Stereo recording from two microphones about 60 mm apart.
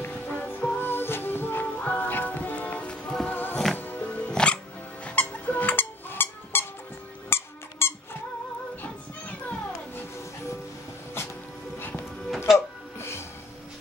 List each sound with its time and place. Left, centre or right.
0.0 s music: left
3.3 s music: left
4.3 s music: centre
5.0 s squeak: left
8.8 s music: left
12.5 s a sound: left